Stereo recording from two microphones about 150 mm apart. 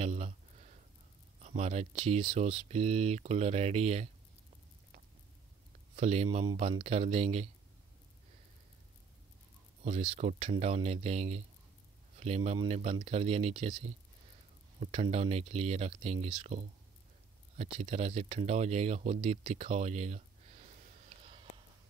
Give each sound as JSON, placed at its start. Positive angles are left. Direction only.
{"t": 0.0, "sound": "a sound", "side_deg": -45}
{"t": 1.4, "sound": "speech", "side_deg": -45}
{"t": 5.9, "sound": "speech", "side_deg": -45}
{"t": 9.8, "sound": "speech", "side_deg": -45}